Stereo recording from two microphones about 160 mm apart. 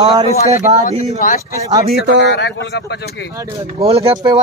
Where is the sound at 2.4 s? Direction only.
90° left.